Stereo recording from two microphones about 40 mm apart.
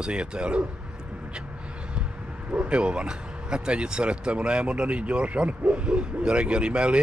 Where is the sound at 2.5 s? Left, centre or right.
Right.